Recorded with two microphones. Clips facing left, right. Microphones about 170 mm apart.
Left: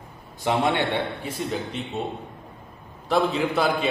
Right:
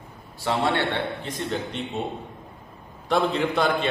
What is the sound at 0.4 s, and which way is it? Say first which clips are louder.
A man's voice: left 1 dB; 15° left (ahead or behind).